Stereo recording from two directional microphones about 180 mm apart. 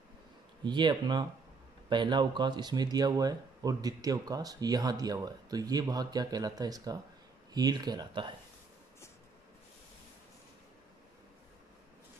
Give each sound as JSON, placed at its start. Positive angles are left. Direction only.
{"t": 0.7, "sound": "speech", "side_deg": -25}